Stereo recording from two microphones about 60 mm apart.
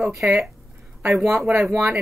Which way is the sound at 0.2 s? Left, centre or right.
Right.